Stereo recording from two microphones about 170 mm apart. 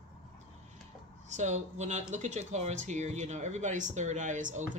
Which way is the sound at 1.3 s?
45° right (ahead or behind).